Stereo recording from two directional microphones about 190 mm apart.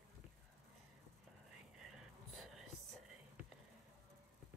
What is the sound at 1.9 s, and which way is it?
Whispering, centre (ahead or behind).